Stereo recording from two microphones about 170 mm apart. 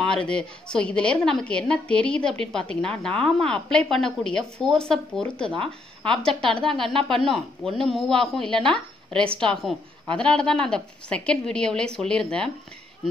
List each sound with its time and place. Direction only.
0.1 s a woman's voice: 5° left (ahead or behind)
6.9 s speech: 30° right (ahead or behind)
7.2 s a woman's voice: centre (ahead or behind)